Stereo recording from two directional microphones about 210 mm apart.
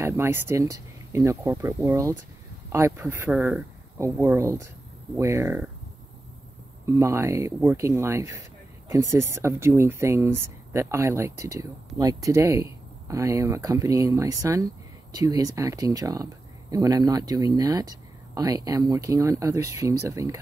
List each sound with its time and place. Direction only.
0.0 s speech: 10° right (ahead or behind)
6.9 s speech: 15° right (ahead or behind)